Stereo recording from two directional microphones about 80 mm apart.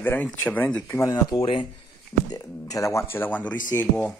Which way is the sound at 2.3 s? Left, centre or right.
Left.